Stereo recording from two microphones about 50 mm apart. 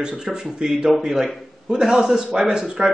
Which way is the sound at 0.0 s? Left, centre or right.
Centre.